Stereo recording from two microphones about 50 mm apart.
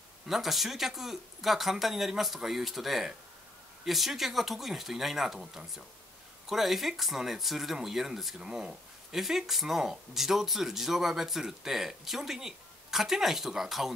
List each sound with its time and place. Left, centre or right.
0.3 s speech: centre
8.4 s speech: centre
9.1 s speech: centre